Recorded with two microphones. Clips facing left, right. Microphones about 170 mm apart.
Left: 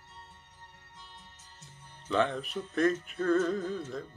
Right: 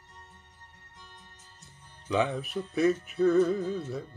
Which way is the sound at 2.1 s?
10° right (ahead or behind).